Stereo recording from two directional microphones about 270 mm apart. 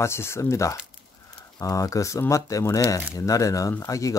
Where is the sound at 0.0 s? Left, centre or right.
Centre.